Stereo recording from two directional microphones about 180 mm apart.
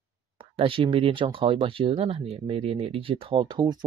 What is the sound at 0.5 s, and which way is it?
Speech, 30° right (ahead or behind).